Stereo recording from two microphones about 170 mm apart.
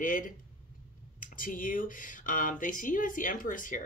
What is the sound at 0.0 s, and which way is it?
Speech, 50° left (ahead or behind).